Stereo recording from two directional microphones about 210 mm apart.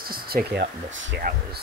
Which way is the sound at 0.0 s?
45° right (ahead or behind).